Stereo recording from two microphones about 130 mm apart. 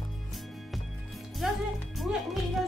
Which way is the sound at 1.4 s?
5° right (ahead or behind).